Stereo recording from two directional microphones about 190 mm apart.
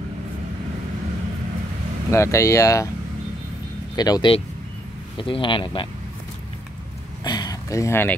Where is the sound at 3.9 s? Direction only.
20° left (ahead or behind).